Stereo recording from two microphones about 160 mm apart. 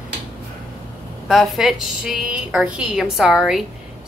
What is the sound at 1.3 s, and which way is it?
A woman's voice, centre (ahead or behind).